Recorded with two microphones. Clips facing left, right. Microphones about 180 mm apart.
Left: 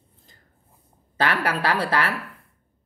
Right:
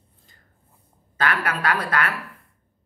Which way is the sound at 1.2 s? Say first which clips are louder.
Left 1 dB; 30° left (ahead or behind).